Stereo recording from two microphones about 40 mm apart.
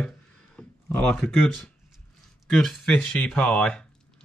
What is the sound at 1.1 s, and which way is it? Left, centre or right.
Speech, centre.